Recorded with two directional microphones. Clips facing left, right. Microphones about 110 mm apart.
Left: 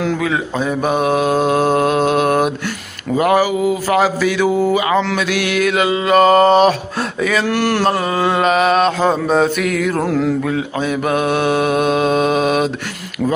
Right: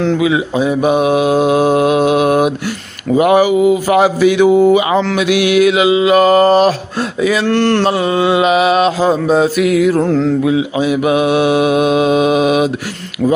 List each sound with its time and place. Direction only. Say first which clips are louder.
0.2 s mantra: right 5 dB; 10° right (ahead or behind)
3.2 s speech: right 4 dB; 20° right (ahead or behind)
5.1 s mantra: right 6 dB; 15° right (ahead or behind)
7.4 s a sound: right 4 dB; 10° left (ahead or behind)
7.9 s mantra: right 4 dB; centre (ahead or behind)
10.0 s a sound: right 3 dB; 5° left (ahead or behind)
10.4 s mantra: right 6 dB; 10° right (ahead or behind)